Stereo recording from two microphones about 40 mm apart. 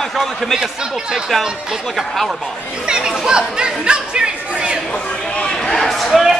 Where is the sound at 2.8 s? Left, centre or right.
Centre.